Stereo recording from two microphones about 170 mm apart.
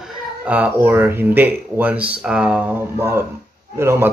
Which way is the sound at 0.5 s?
10° right (ahead or behind).